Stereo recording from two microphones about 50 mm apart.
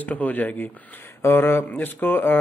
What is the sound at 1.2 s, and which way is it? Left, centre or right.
Speech, left.